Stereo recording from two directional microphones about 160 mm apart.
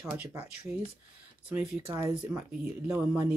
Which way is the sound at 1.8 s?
20° right (ahead or behind).